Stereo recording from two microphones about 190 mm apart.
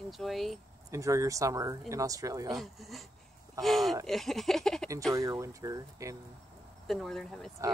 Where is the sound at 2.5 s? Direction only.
Centre (ahead or behind).